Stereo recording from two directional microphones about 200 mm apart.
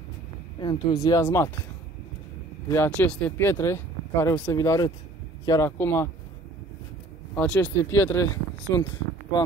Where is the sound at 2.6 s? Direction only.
10° left (ahead or behind).